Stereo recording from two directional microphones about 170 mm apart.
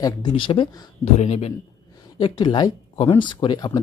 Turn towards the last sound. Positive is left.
turn(degrees=25)  # may be behind; listen again after turning